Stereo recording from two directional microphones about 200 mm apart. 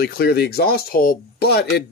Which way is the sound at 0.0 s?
50° left (ahead or behind).